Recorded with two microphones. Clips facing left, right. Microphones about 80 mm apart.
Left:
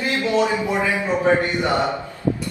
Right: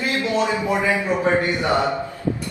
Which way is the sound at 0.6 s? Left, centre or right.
Right.